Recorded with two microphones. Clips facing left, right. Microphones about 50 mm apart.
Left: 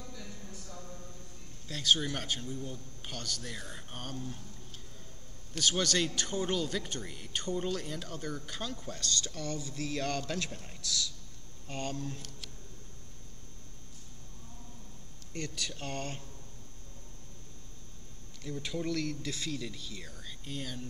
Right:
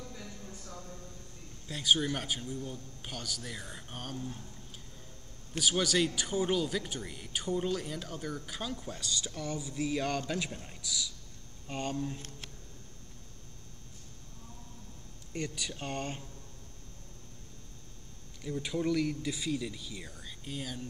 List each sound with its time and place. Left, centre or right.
0.5 s a sound: right
1.7 s speech: centre
5.6 s a man's voice: centre
15.3 s a man's voice: centre
18.4 s a man's voice: centre